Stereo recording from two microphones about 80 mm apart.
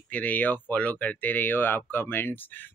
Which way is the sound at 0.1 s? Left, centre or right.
Centre.